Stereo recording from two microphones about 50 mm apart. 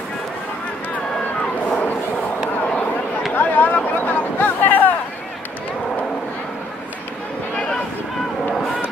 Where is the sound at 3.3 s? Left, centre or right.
Left.